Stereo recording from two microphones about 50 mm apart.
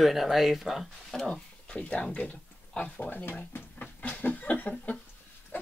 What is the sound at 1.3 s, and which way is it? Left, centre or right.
Speech, centre.